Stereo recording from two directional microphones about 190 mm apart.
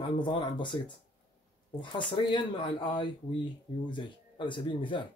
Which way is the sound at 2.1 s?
25° left (ahead or behind).